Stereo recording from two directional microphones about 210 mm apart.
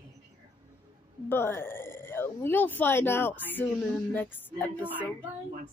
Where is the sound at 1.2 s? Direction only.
10° left (ahead or behind).